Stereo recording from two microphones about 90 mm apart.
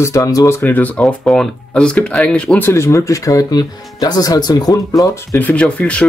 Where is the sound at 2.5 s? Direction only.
25° left (ahead or behind); by 5.1 s 40° left (ahead or behind).